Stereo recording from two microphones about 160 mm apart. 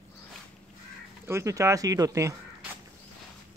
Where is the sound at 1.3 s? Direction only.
20° right (ahead or behind).